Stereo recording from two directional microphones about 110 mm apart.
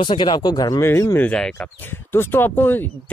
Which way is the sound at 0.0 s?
45° left (ahead or behind).